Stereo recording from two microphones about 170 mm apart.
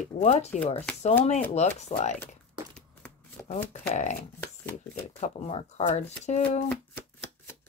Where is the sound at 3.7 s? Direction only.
45° left (ahead or behind).